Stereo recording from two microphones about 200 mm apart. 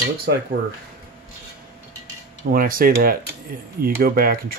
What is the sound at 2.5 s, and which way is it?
Speech, 45° right (ahead or behind).